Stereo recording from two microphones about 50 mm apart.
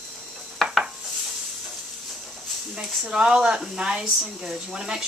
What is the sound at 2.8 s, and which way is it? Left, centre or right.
Speech, centre.